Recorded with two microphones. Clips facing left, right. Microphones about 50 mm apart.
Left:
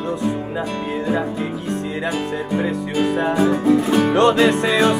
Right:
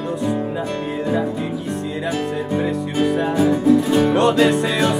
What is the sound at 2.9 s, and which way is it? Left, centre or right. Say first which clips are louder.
Music: even; left.